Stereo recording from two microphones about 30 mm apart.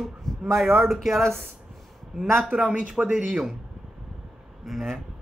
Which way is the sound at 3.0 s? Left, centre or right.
Right.